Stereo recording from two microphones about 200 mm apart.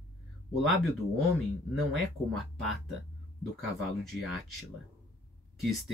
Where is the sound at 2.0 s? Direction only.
Centre (ahead or behind).